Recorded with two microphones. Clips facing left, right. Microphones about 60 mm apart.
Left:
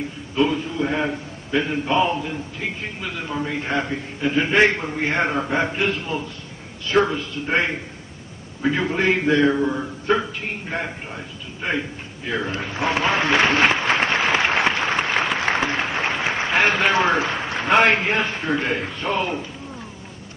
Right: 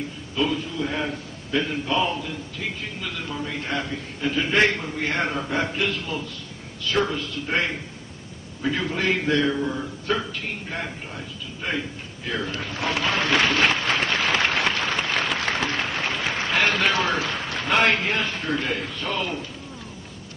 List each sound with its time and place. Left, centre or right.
0.4 s a man's voice: left
12.3 s applause: left